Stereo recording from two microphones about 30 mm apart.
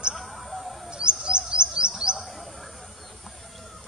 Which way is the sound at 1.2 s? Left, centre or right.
Right.